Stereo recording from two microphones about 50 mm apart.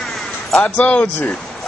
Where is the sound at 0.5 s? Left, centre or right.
Left.